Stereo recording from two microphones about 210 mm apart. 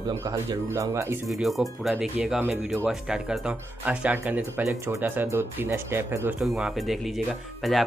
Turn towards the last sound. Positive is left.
turn(degrees=0)  # may be behind; listen again after turning